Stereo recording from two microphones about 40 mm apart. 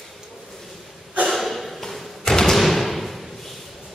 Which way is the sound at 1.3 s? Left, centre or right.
Centre.